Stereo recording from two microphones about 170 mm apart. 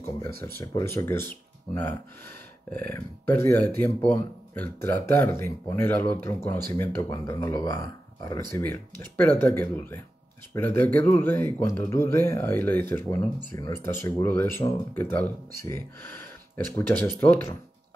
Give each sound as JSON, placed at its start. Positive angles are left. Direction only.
{"t": 0.6, "sound": "speech", "side_deg": 15}
{"t": 2.9, "sound": "speech", "side_deg": 15}